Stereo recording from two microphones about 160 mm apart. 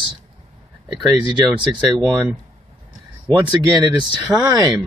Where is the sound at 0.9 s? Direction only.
5° right (ahead or behind).